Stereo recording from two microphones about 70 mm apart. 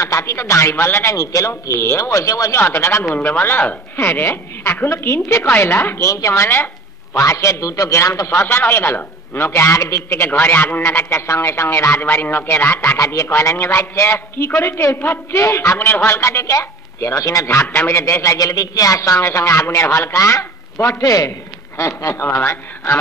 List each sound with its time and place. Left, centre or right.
0.0 s a man's voice: left
2.6 s a man's voice: left
3.2 s a man's voice: left
5.4 s a man's voice: left
15.4 s a man's voice: left